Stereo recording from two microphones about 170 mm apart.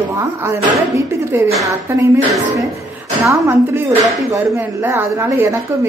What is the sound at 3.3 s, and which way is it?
A woman's voice, 15° right (ahead or behind).